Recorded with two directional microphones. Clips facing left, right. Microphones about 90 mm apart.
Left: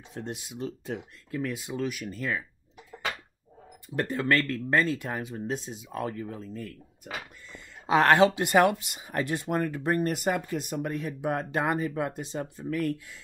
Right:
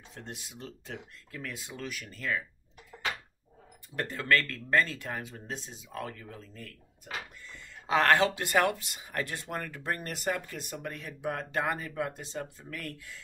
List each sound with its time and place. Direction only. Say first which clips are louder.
0.1 s speech: left 8 dB; 15° left (ahead or behind)
3.9 s speech: left 3 dB; 15° left (ahead or behind)